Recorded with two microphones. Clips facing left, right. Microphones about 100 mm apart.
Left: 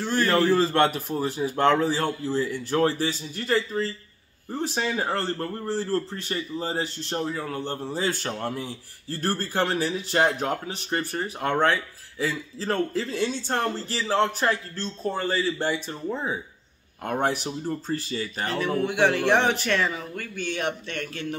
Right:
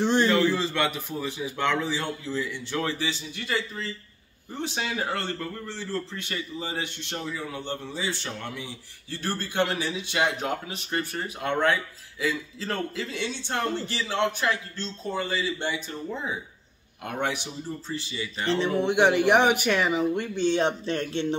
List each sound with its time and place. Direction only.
0.0 s a sound: 20° right (ahead or behind)
0.6 s a man's voice: 45° left (ahead or behind)
10.4 s a man's voice: 30° left (ahead or behind)
18.5 s speech: 25° right (ahead or behind)